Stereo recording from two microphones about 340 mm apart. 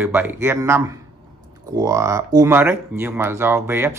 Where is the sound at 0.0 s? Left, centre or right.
Centre.